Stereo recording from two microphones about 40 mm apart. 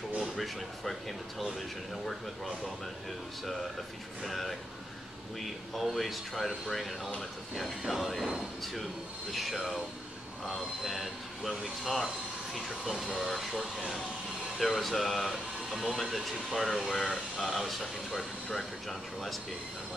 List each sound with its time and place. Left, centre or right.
0.2 s speech: centre
4.2 s speech: centre